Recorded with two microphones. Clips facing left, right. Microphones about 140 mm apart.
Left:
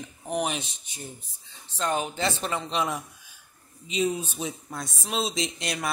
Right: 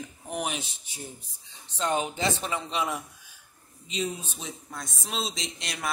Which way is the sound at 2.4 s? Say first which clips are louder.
Left 2 dB; 10° right (ahead or behind).